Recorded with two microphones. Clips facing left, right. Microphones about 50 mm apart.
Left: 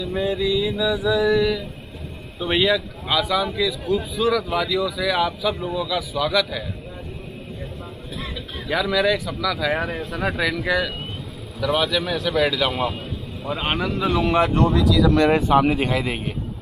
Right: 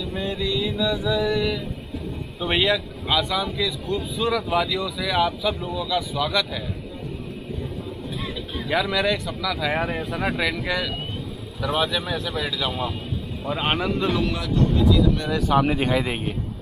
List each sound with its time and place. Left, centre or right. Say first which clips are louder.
0.0 s speech: left 4 dB; centre
8.6 s speech: left 2 dB; centre
13.5 s speech: even; centre
14.4 s speech: left 3 dB; left
15.5 s speech: left 2 dB; centre